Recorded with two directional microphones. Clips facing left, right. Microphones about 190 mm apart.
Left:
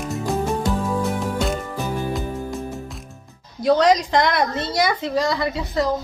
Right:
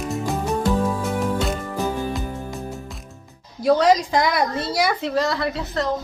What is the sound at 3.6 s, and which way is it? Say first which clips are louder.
A woman's voice: even; 5° right (ahead or behind).